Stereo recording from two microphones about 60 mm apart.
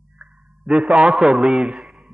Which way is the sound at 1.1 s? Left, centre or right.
Centre.